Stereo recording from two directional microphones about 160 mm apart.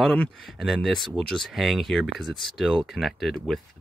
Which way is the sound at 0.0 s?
5° left (ahead or behind).